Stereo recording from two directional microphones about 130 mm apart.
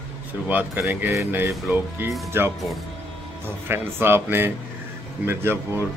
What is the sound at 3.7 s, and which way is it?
Speech, 15° right (ahead or behind).